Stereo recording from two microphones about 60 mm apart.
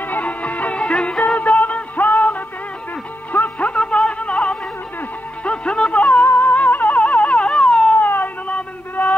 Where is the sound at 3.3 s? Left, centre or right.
Left.